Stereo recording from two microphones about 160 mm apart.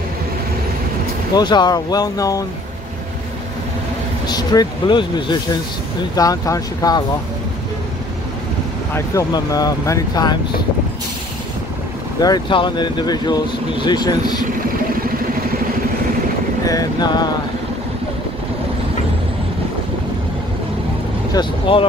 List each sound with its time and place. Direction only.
1.3 s speech: 25° left (ahead or behind)
4.3 s speech: 25° left (ahead or behind)
8.9 s speech: 20° left (ahead or behind)
12.2 s speech: 25° left (ahead or behind)
16.6 s speech: 25° left (ahead or behind)
21.3 s speech: 30° left (ahead or behind)